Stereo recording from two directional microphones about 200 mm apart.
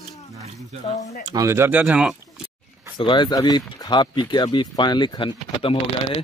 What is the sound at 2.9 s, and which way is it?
Speech, 25° left (ahead or behind).